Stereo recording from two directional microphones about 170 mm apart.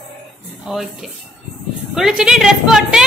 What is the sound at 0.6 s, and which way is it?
A woman's voice, centre (ahead or behind).